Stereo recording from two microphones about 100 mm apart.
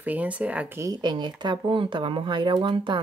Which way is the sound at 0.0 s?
15° right (ahead or behind).